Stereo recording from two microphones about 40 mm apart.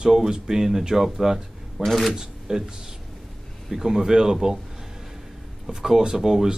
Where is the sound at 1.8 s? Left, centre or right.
Centre.